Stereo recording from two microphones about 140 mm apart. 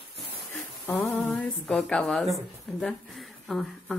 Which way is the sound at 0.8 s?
15° left (ahead or behind).